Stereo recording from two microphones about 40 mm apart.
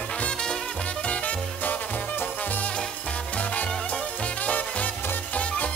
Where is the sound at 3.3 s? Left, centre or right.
Left.